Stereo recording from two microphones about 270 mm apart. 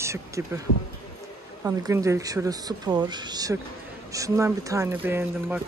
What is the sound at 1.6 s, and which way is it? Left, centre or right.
Speech, centre.